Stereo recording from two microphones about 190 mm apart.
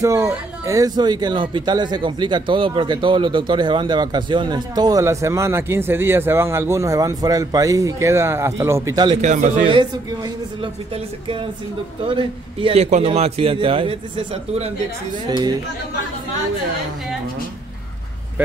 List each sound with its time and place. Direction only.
0.0 s speech: 15° right (ahead or behind)
9.2 s speech: 40° right (ahead or behind)
9.7 s speech: 25° right (ahead or behind)
12.1 s speech: 25° right (ahead or behind)
15.2 s speech: 20° right (ahead or behind)